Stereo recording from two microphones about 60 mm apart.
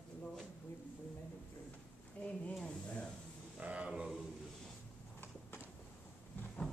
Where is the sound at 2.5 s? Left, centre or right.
Centre.